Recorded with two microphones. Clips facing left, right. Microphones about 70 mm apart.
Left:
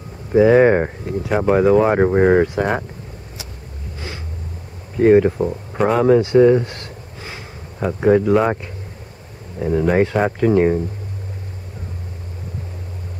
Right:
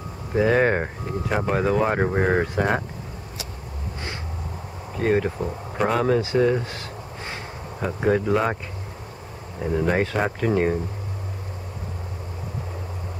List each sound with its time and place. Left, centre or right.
0.3 s speech: centre
5.0 s speech: centre
5.8 s speech: centre
9.6 s speech: centre